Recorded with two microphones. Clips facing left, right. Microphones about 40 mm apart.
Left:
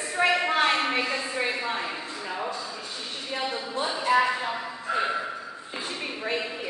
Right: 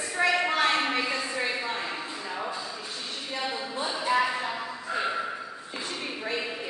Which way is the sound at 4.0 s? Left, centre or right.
Centre.